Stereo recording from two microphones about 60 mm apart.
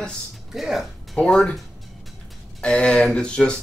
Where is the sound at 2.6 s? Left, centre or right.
Centre.